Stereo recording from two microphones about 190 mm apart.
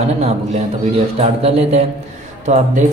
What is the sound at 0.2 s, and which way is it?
Speech, 35° right (ahead or behind).